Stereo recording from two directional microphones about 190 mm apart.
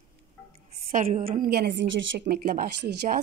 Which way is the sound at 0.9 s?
45° right (ahead or behind).